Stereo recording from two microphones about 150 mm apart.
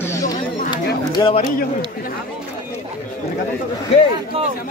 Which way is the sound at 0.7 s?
35° left (ahead or behind).